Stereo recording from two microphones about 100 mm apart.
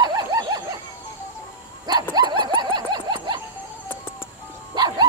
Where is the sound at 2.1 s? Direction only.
45° right (ahead or behind).